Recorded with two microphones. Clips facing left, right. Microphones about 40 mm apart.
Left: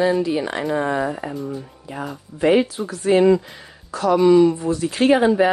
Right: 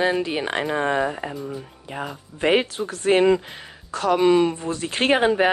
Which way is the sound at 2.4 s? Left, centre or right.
Right.